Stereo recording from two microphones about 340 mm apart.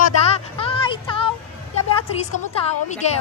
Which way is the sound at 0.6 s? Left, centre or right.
Centre.